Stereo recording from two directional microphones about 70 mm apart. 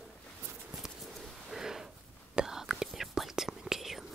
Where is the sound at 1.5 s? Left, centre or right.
Centre.